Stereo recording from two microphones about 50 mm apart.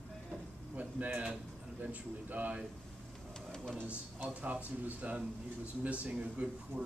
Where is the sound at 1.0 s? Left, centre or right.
Right.